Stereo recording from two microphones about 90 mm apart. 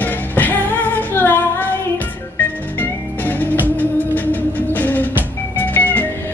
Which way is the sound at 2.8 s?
20° left (ahead or behind).